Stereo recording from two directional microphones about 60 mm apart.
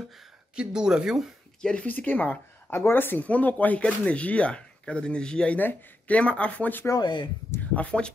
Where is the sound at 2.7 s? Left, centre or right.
Left.